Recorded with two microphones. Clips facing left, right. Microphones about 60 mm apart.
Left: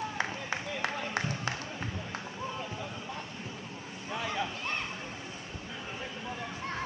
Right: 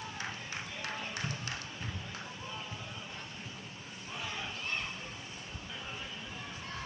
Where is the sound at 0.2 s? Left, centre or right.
Left.